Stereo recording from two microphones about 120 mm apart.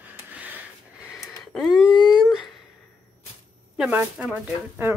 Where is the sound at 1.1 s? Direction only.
Centre (ahead or behind).